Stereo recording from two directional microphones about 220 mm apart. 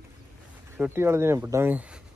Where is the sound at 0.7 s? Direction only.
10° right (ahead or behind).